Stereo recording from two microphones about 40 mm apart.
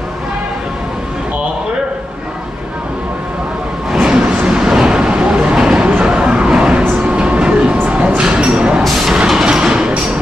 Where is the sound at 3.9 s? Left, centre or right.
Centre.